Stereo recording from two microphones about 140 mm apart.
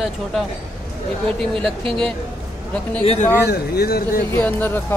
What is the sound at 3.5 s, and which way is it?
Speech, 90° left.